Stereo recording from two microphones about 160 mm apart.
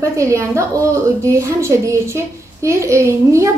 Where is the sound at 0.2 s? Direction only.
20° right (ahead or behind).